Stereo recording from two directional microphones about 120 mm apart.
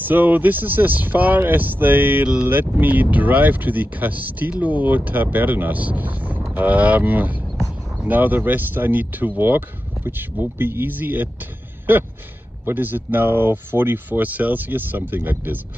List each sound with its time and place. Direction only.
0.0 s speech: 15° right (ahead or behind)